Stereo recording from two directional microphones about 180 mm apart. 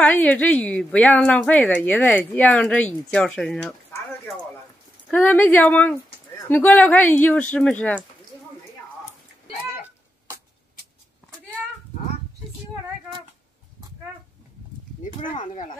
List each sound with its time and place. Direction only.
0.0 s a woman's voice: 10° left (ahead or behind)
15.4 s speech: 45° left (ahead or behind)